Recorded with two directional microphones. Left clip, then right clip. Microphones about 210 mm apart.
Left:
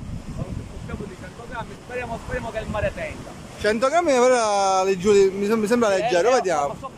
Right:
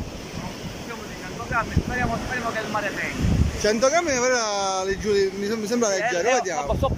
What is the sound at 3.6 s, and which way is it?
Speech, centre (ahead or behind).